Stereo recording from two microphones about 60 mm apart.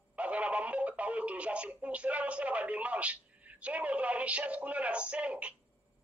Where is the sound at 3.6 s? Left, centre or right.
Right.